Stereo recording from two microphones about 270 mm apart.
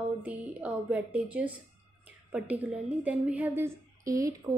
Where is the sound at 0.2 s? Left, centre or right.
Centre.